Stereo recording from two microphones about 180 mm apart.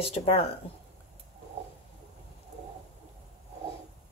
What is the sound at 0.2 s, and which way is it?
Speech, 35° left (ahead or behind).